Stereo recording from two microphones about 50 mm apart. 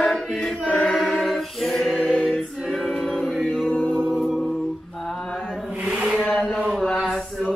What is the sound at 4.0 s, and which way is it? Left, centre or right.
Music, centre.